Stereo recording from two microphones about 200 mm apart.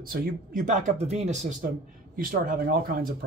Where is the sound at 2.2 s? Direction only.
45° right (ahead or behind).